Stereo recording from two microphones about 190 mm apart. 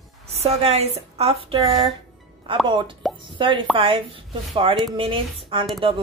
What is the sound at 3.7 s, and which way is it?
Speech, 30° right (ahead or behind).